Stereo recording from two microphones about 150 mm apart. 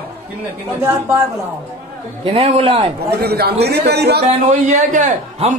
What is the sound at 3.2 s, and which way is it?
A man's voice, 90° right.